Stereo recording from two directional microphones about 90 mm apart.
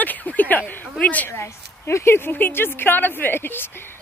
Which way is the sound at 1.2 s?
30° left (ahead or behind).